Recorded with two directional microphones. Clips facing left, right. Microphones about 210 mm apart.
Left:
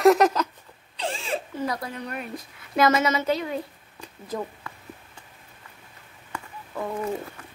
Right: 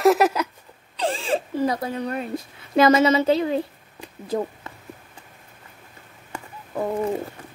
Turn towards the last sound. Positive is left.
turn(degrees=-35)  # may be behind; listen again after turning